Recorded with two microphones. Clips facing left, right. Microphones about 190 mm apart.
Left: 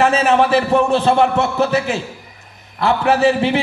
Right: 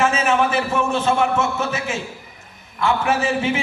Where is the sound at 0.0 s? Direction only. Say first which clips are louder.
Left 4 dB; 35° left (ahead or behind).